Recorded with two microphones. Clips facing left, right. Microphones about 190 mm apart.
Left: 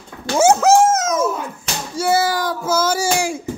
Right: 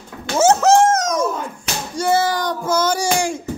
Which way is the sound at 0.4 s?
10° left (ahead or behind).